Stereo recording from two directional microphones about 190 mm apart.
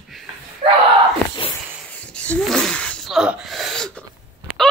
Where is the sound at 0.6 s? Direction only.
30° right (ahead or behind).